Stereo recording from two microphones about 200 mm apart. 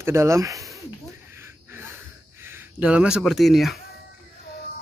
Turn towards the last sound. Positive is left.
turn(degrees=0)  # may be behind; listen again after turning